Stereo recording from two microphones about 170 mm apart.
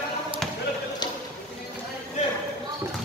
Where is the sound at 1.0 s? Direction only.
25° left (ahead or behind).